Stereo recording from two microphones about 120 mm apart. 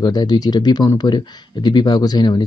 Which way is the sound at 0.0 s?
35° left (ahead or behind).